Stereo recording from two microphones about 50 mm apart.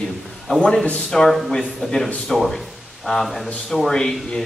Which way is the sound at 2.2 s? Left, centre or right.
Centre.